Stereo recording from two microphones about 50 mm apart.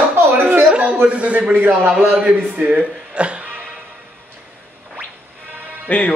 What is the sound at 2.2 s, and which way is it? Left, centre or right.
Speech, right.